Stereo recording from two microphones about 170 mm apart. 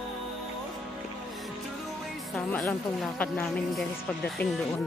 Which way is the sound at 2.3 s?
5° left (ahead or behind).